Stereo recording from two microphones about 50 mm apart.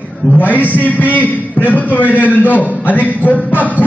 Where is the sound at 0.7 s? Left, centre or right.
Left.